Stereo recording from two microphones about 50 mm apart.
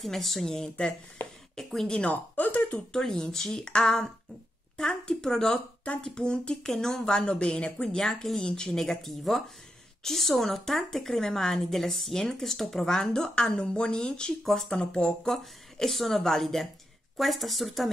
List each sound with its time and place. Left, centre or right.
0.0 s a woman's voice: centre
1.9 s speech: left
2.3 s a sound: left
2.9 s a woman's voice: centre
6.6 s a woman's voice: centre
14.4 s a woman's voice: centre
14.8 s speech: centre
15.3 s a woman's voice: centre